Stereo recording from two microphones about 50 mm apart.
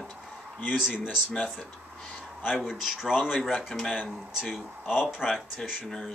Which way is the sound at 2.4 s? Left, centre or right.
Centre.